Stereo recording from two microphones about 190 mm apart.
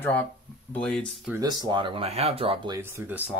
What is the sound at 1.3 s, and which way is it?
Speech, 20° right (ahead or behind).